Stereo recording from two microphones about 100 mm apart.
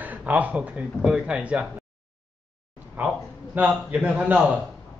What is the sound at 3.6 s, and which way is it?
Speech, 15° right (ahead or behind).